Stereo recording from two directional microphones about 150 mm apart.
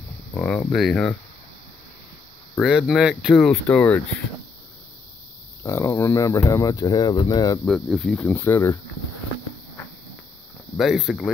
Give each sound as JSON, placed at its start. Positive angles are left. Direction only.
{"t": 0.3, "sound": "speech", "side_deg": 10}
{"t": 2.5, "sound": "speech", "side_deg": 5}
{"t": 3.3, "sound": "speech", "side_deg": 5}
{"t": 5.6, "sound": "speech", "side_deg": 20}
{"t": 7.6, "sound": "speech", "side_deg": 5}
{"t": 10.8, "sound": "speech", "side_deg": 0}